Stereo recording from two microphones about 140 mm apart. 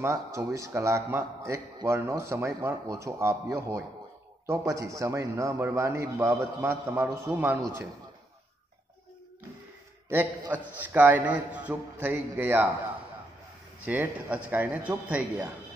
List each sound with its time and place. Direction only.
0.0 s a man's voice: 20° right (ahead or behind)
10.0 s a man's voice: 15° right (ahead or behind)
13.8 s a man's voice: 10° right (ahead or behind)